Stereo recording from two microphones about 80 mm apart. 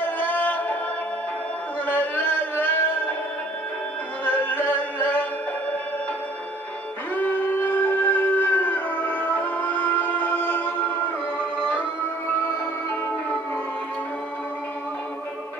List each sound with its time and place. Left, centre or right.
0.2 s music: left
1.9 s chant: left
4.2 s music: left
7.2 s a sound: left
11.3 s music: left